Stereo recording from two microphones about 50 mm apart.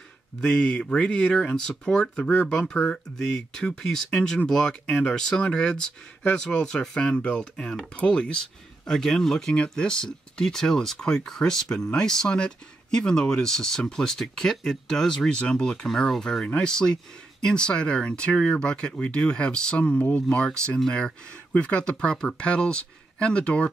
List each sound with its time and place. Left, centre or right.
0.4 s speech: centre
9.5 s speech: centre
15.7 s speech: centre; by 20.4 s left
21.5 s speech: left